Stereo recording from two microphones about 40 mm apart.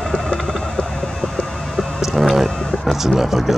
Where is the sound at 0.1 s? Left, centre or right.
Left.